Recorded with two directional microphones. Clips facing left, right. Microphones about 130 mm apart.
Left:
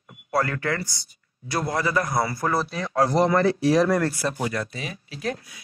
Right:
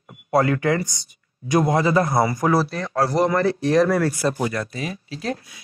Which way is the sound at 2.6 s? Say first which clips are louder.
Right 4 dB; 5° left (ahead or behind).